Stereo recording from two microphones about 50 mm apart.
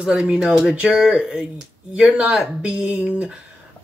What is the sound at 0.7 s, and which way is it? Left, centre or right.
Speech, right.